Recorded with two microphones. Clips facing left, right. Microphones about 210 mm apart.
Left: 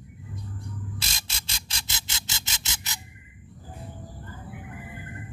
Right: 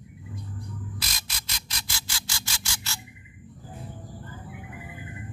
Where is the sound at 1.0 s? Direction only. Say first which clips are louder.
Even; 25° left (ahead or behind).